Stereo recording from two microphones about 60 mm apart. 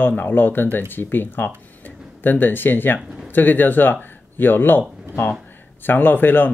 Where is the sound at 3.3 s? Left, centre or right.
Left.